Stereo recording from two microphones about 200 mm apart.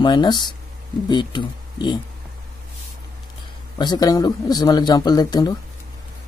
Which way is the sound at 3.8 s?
20° left (ahead or behind).